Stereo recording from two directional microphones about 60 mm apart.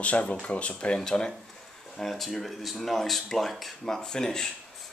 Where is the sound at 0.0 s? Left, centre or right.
Left.